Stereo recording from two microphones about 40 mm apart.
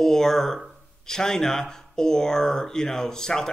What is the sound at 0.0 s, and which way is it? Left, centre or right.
Speech, centre.